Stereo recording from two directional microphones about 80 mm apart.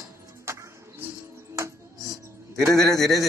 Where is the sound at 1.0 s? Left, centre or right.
Right.